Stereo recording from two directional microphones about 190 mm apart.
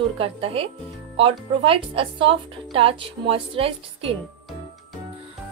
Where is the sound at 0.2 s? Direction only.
30° right (ahead or behind).